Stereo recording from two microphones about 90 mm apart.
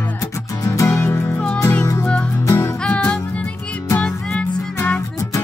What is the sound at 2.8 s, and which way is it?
Music, 10° left (ahead or behind).